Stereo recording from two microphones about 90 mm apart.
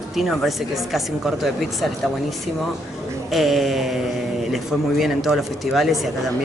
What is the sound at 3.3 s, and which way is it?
Speech, centre (ahead or behind).